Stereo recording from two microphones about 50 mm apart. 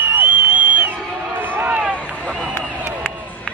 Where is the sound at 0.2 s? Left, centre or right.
Right.